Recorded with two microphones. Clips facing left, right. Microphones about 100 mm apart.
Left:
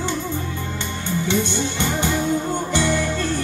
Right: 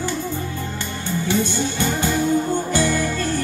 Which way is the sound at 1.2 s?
20° left (ahead or behind).